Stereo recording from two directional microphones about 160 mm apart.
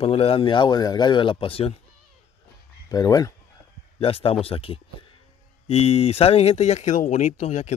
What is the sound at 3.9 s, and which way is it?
A man's voice, 35° left (ahead or behind).